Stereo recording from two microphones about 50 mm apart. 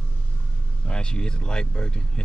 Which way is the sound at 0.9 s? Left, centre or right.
Centre.